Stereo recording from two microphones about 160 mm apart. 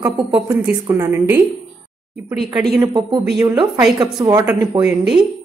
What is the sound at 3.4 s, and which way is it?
A woman's voice, 25° right (ahead or behind).